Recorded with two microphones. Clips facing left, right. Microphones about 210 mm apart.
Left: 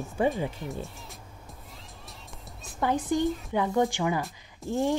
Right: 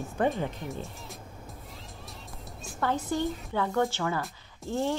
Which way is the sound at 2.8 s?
15° left (ahead or behind).